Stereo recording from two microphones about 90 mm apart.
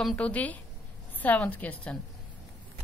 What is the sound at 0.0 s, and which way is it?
Speech, 10° left (ahead or behind).